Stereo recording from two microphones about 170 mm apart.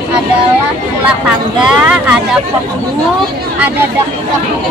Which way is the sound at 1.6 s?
5° right (ahead or behind).